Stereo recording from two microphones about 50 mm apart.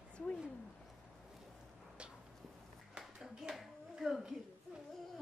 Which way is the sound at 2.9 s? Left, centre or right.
Centre.